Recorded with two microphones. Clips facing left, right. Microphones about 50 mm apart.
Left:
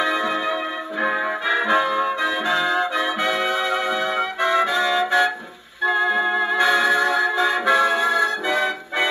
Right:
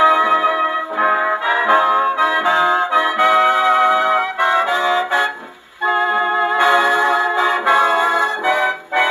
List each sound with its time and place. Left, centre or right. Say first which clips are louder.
0.0 s music: right 9 dB; right
1.0 s brass instrument: right 5 dB; right
2.3 s music: right 6 dB; right